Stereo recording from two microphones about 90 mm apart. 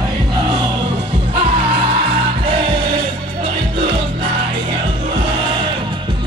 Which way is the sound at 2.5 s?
80° right.